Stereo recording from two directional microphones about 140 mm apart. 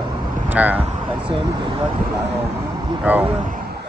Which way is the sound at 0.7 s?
45° right (ahead or behind).